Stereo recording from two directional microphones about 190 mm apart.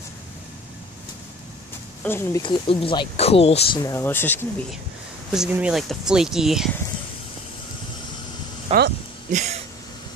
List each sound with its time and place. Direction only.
2.0 s speech: 10° left (ahead or behind)
2.4 s speech: 25° left (ahead or behind)
3.8 s speech: 15° left (ahead or behind)
5.3 s speech: 5° right (ahead or behind)
8.7 s a sound: 30° right (ahead or behind)